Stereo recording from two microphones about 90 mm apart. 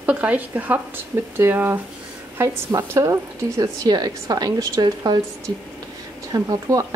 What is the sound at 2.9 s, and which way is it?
A woman's voice, 35° right (ahead or behind).